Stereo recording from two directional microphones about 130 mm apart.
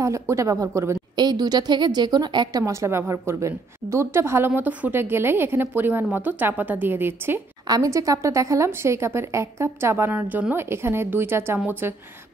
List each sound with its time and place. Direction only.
0.0 s a woman's voice: 25° right (ahead or behind)
7.6 s a woman's voice: 30° right (ahead or behind)